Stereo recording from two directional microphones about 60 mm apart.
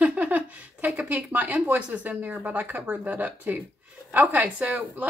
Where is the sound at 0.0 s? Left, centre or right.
Right.